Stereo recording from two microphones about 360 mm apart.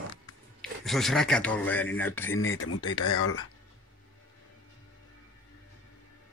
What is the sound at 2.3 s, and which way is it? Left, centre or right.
Speech, left.